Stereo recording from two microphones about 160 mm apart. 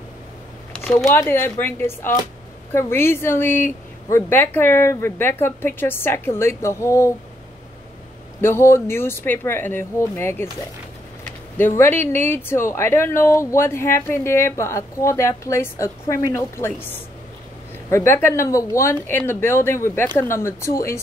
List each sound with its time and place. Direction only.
0.9 s speech: 15° left (ahead or behind)
8.4 s speech: 15° left (ahead or behind)
11.5 s speech: 15° left (ahead or behind)